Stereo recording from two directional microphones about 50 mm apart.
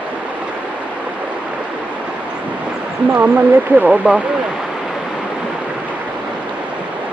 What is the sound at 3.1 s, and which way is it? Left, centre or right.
Speech, right.